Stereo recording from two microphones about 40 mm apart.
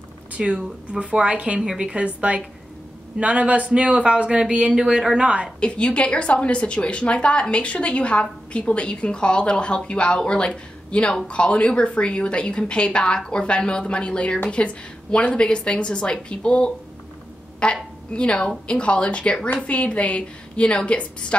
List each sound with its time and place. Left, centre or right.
0.4 s speech: right
1.6 s speech: centre
2.0 s a man's voice: right
5.6 s a woman's voice: left